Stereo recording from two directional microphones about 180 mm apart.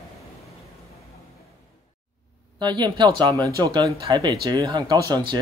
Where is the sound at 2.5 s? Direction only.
25° right (ahead or behind).